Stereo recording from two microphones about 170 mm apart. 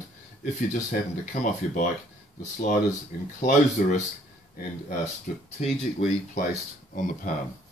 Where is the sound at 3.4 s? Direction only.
50° left (ahead or behind).